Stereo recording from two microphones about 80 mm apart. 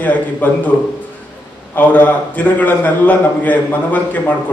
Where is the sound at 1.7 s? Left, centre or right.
Left.